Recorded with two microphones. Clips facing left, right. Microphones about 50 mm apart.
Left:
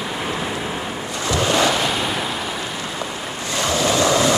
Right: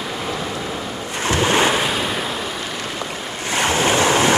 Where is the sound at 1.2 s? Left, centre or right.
Right.